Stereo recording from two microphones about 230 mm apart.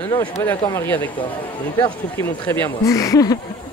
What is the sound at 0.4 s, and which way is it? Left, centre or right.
Speech, centre.